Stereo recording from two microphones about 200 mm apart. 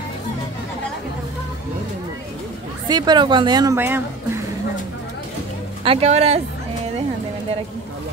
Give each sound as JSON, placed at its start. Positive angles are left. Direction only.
{"t": 2.9, "sound": "a woman's voice", "side_deg": -20}
{"t": 5.9, "sound": "speech", "side_deg": -30}